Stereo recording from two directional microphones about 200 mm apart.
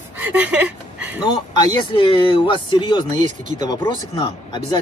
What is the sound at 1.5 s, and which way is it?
Speech, 25° left (ahead or behind).